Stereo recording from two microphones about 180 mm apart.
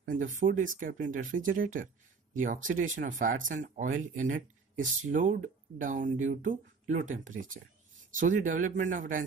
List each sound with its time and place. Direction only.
0.0 s speech: 50° right (ahead or behind)